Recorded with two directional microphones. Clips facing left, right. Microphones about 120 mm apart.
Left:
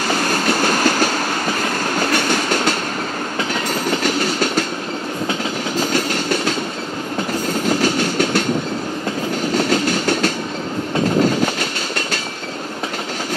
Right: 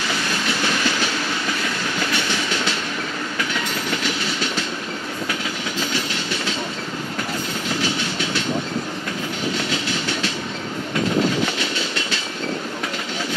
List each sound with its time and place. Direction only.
0.1 s train: 45° left (ahead or behind)
3.8 s train: 45° left (ahead or behind)
5.8 s train: 45° left (ahead or behind)
7.6 s train: 45° left (ahead or behind)
9.5 s train: 45° left (ahead or behind)